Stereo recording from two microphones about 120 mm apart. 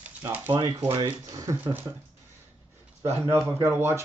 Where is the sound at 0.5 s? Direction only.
35° right (ahead or behind).